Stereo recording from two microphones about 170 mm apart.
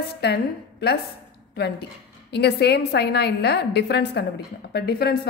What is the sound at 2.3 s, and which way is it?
A woman's voice, 80° left.